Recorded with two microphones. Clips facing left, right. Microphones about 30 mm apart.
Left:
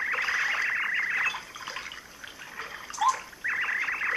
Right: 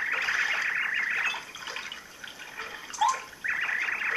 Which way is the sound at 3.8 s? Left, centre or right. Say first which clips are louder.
Even; centre.